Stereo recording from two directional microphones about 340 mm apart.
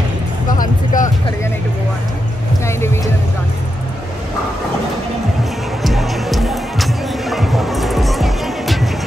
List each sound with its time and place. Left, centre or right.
0.5 s music: left
2.6 s music: centre
5.8 s music: centre